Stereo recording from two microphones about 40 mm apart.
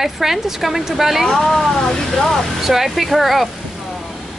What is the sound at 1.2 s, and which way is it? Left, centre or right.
Speech, centre.